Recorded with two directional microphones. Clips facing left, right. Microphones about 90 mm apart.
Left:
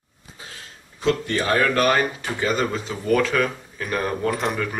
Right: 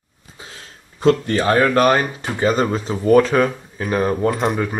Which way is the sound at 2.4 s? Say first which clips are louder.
Right 5 dB; 35° right (ahead or behind).